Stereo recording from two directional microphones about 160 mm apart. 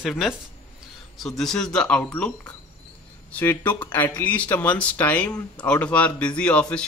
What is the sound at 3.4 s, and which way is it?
Speech, 15° left (ahead or behind).